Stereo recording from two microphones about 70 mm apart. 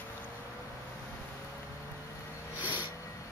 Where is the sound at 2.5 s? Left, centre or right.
Right.